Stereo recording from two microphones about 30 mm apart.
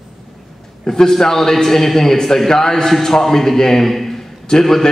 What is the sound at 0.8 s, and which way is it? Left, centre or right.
A man's voice, centre.